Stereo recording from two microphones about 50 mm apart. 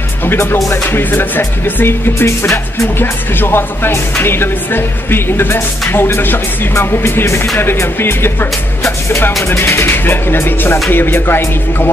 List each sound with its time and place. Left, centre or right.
0.9 s speech: left
2.1 s music: left
3.0 s speech: left